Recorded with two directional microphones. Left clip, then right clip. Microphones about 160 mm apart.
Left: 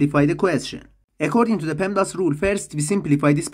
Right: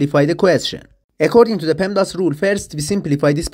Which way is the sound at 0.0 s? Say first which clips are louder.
Right 5 dB; 25° right (ahead or behind).